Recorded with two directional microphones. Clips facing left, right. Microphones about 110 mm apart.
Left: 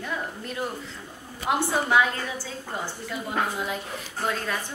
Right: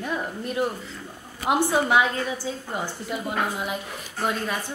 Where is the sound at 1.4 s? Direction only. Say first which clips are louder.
Right 3 dB; 15° right (ahead or behind).